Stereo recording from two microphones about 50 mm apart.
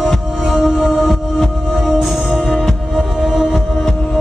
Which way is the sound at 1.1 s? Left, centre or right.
Centre.